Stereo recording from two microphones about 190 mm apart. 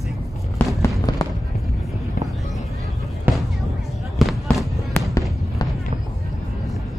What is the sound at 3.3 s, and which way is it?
Music, 10° right (ahead or behind).